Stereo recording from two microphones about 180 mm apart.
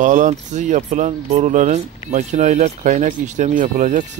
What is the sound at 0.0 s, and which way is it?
Speech, 45° right (ahead or behind).